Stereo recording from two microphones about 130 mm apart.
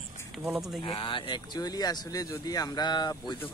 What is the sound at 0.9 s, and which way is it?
Speech, 40° left (ahead or behind).